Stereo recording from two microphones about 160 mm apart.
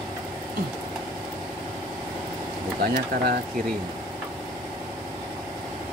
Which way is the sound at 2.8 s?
75° right (ahead or behind).